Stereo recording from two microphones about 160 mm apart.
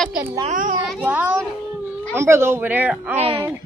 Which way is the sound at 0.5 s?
50° right (ahead or behind).